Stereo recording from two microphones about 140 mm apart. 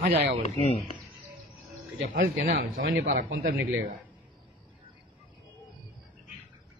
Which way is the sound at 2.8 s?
70° right (ahead or behind).